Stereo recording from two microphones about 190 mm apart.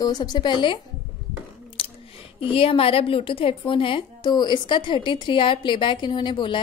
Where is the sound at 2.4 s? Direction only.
30° left (ahead or behind).